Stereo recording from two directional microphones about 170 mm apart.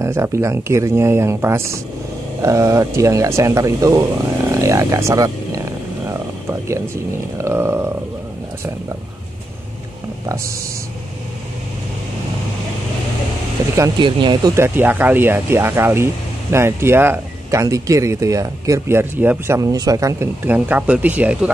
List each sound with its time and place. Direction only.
0.0 s speech: 15° right (ahead or behind)
4.5 s vehicle: 20° right (ahead or behind)
7.3 s speech: 15° right (ahead or behind)
10.2 s speech: 20° right (ahead or behind)
13.7 s speech: 25° right (ahead or behind)
14.5 s speech: 15° right (ahead or behind)